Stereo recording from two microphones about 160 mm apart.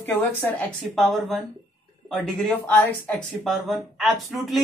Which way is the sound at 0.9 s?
Centre (ahead or behind).